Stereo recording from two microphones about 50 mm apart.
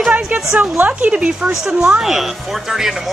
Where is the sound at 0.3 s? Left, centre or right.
Right.